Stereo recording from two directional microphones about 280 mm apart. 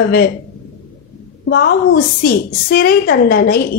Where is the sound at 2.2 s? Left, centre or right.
Left.